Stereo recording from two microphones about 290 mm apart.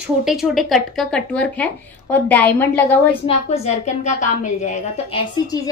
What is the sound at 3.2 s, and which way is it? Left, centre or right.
A woman's voice, left.